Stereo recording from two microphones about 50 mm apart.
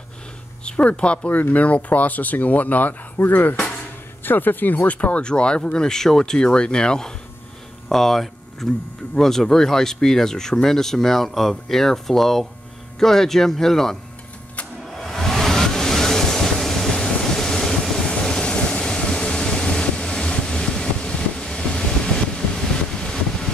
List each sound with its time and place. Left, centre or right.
0.7 s speech: left
14.9 s waves: centre
22.9 s a sound: centre